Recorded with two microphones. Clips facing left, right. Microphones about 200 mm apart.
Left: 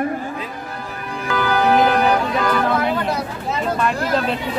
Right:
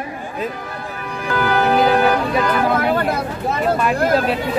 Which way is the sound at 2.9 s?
50° right (ahead or behind).